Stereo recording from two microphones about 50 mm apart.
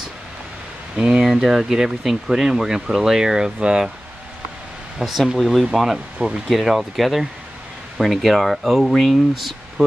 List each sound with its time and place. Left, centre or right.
0.9 s speech: right
1.2 s speech: centre
4.9 s speech: centre